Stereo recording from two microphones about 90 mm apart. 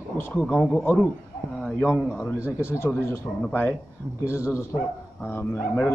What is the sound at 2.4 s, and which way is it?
Speech, 15° right (ahead or behind).